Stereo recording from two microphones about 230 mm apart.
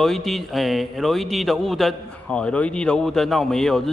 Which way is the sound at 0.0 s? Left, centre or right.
Centre.